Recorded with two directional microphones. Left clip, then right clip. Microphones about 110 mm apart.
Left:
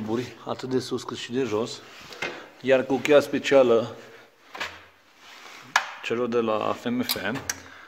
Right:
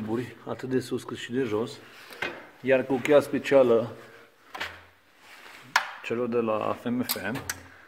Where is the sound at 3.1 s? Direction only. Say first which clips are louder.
Left 2 dB; centre (ahead or behind).